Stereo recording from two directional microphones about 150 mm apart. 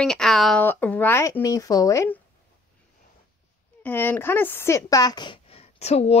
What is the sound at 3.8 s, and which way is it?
A woman's voice, 10° left (ahead or behind).